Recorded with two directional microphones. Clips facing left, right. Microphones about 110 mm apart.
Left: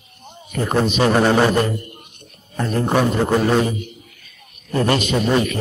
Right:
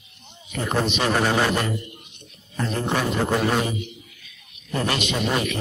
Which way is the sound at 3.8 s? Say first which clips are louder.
Left 2 dB; 45° left (ahead or behind).